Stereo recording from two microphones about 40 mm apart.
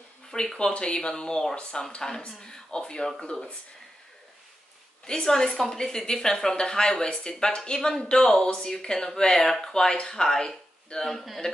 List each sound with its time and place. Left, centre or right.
0.3 s speech: left
5.2 s speech: centre
11.0 s speech: centre